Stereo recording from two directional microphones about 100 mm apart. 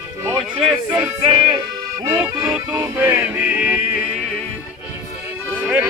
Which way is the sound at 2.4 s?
25° right (ahead or behind).